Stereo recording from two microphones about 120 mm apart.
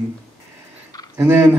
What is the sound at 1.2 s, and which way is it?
Speech, 20° right (ahead or behind).